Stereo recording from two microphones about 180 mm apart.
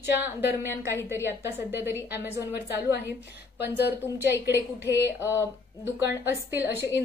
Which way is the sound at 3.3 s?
65° left (ahead or behind).